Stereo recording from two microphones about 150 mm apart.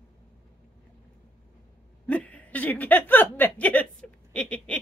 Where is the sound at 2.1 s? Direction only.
10° left (ahead or behind).